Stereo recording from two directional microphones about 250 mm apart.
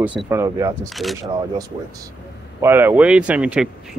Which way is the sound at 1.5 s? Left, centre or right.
Centre.